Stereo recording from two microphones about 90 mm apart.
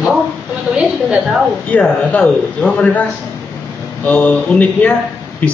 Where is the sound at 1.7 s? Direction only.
15° left (ahead or behind).